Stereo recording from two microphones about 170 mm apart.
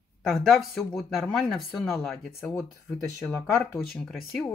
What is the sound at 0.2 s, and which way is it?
Speech, centre (ahead or behind).